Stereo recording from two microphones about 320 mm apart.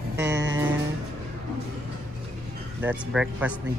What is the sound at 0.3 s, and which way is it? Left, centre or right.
Music, right.